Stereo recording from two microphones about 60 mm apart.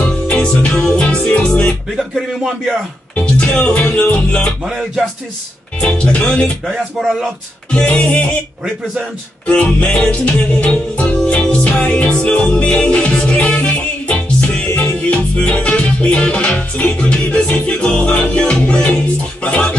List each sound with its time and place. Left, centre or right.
0.3 s music: centre
2.0 s speech: centre
3.2 s music: left
5.8 s music: centre
6.6 s speech: centre
7.7 s music: centre
9.5 s music: left